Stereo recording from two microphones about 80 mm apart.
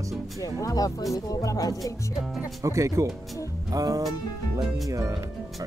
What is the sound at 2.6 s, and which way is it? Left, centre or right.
Speech, right.